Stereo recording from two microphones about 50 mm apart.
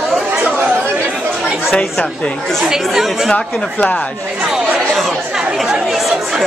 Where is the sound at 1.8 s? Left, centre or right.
Left.